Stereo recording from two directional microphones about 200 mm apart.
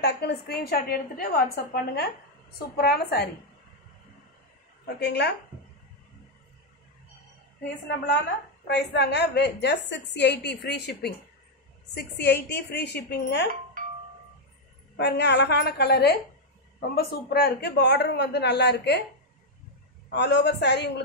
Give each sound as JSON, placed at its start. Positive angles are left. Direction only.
{"t": 0.0, "sound": "a woman's voice", "side_deg": 50}
{"t": 4.8, "sound": "a woman's voice", "side_deg": 55}
{"t": 8.6, "sound": "a woman's voice", "side_deg": 55}
{"t": 15.0, "sound": "a woman's voice", "side_deg": 55}
{"t": 20.1, "sound": "a woman's voice", "side_deg": 60}